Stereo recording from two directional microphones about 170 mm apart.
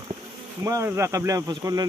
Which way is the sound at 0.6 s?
15° right (ahead or behind).